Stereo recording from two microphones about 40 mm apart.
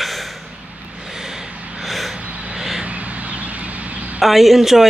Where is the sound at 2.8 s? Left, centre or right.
Right.